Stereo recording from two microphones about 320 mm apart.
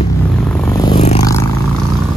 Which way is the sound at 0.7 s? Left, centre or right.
Centre.